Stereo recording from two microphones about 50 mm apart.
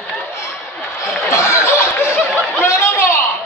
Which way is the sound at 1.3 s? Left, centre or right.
Left.